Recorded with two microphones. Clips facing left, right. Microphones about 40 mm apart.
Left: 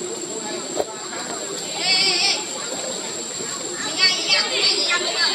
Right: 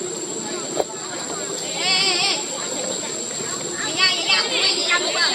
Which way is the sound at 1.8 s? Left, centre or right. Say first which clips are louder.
Even; centre.